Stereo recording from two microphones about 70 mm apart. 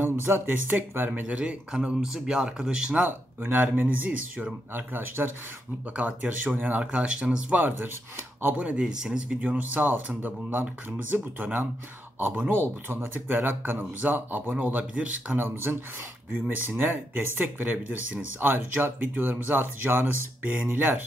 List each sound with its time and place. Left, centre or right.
0.2 s speech: right
1.2 s speech: centre
3.1 s speech: right
5.9 s speech: right
6.9 s speech: centre
8.2 s speech: right
8.5 s speech: centre
12.3 s speech: right
15.3 s speech: right